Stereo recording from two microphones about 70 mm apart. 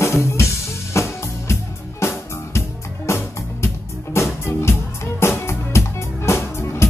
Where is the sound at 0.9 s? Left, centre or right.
Left.